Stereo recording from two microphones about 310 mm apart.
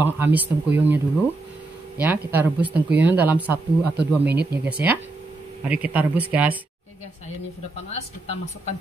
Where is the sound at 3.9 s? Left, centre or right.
Right.